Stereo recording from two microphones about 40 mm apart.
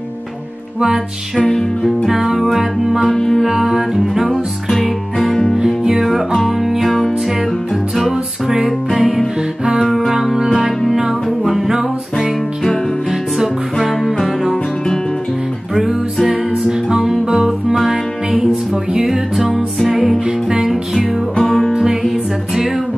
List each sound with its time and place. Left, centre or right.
0.7 s music: centre
1.5 s music: centre
2.0 s music: centre
4.6 s music: centre
7.9 s music: centre
13.7 s music: centre
15.7 s music: centre
18.9 s music: centre
20.2 s music: centre
21.4 s music: centre